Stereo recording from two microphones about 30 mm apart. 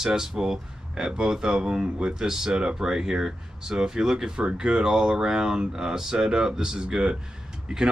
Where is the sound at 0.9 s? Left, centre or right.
Right.